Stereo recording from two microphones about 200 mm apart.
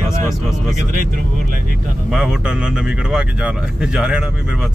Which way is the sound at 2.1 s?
5° right (ahead or behind).